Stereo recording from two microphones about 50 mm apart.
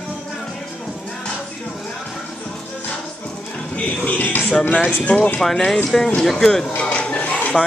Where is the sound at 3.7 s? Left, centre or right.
Left.